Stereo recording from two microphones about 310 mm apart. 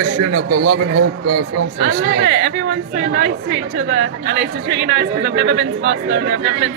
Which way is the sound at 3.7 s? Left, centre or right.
Right.